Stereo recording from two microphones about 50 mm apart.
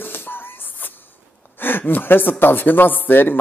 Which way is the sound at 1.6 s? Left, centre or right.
Left.